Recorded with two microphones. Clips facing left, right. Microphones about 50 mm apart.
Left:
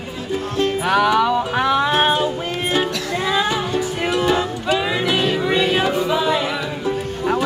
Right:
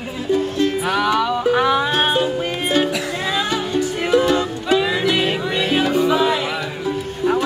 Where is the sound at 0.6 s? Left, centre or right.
Centre.